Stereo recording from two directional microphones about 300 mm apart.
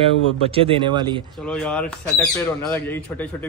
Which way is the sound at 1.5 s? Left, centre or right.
Centre.